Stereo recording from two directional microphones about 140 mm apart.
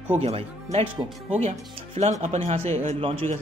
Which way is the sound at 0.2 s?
50° right (ahead or behind).